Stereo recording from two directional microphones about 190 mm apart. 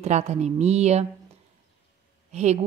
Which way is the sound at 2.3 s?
35° right (ahead or behind).